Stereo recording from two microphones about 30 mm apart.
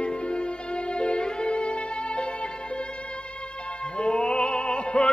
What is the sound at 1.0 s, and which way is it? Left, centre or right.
Violin, left.